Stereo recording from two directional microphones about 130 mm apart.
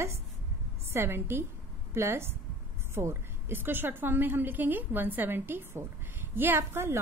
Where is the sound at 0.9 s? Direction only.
20° right (ahead or behind).